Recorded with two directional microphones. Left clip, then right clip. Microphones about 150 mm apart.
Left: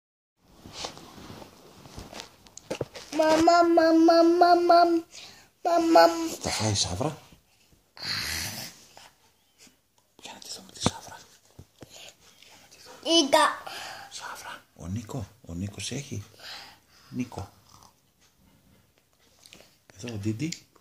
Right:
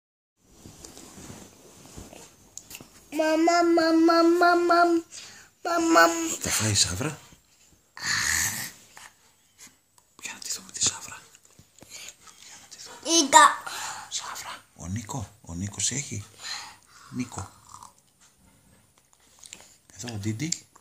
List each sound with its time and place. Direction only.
2.6 s a sound: 15° right (ahead or behind)
3.2 s singing: 10° right (ahead or behind)
3.8 s singing: centre (ahead or behind)
6.7 s speech: 25° right (ahead or behind)
7.9 s dog: 20° right (ahead or behind)
10.2 s whispering: 30° right (ahead or behind)
11.9 s a sound: 20° right (ahead or behind)
15.6 s speech: 20° right (ahead or behind)
19.5 s a sound: 15° right (ahead or behind)